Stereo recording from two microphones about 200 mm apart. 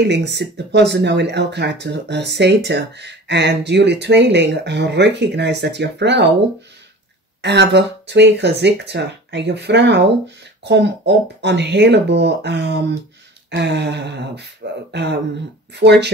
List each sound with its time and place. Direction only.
0.0 s speech: 60° right (ahead or behind)
7.4 s speech: 60° right (ahead or behind)